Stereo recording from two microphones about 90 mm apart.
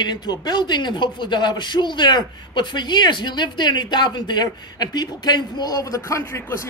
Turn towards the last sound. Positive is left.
turn(degrees=30)  # may be behind; listen again after turning